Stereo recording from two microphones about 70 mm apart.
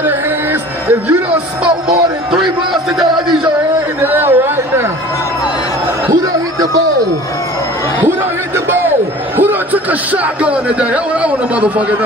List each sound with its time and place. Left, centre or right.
4.0 s chatter: right
8.5 s a sound: right
9.4 s speech: right